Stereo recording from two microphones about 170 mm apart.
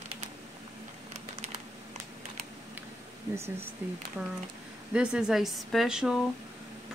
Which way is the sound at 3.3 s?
15° right (ahead or behind).